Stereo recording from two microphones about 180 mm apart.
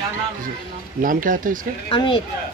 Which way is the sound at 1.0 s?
50° right (ahead or behind).